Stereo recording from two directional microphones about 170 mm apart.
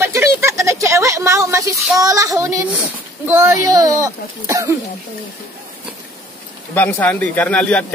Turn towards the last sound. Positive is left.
turn(degrees=10)  # may be behind; listen again after turning